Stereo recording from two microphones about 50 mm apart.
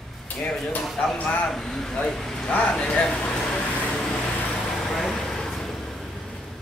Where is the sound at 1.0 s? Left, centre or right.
Left.